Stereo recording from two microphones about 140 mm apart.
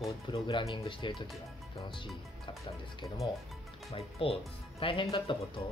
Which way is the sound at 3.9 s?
45° left (ahead or behind).